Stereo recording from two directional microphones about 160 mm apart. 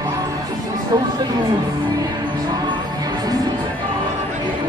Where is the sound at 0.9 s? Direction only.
25° right (ahead or behind).